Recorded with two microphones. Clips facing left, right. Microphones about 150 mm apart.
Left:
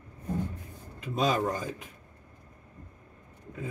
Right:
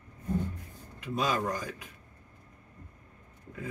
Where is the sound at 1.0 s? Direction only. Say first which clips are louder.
Left 3 dB; 25° left (ahead or behind).